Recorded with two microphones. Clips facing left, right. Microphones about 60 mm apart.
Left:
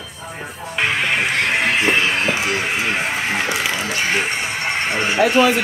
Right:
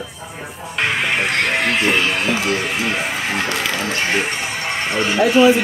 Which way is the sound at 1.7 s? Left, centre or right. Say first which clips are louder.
Even; centre.